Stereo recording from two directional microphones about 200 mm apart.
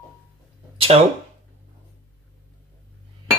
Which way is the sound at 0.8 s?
30° right (ahead or behind).